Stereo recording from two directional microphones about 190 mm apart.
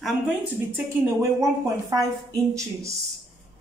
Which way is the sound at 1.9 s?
15° right (ahead or behind).